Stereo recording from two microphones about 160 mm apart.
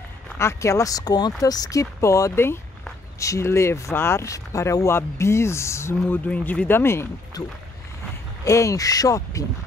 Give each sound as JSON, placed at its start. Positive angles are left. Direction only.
{"t": 0.4, "sound": "speech", "side_deg": 15}
{"t": 8.5, "sound": "speech", "side_deg": 20}